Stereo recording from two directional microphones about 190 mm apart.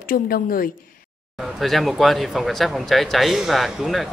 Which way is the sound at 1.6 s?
Centre (ahead or behind).